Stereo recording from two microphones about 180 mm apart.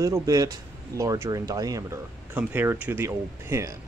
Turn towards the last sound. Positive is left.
turn(degrees=-15)  # may be behind; listen again after turning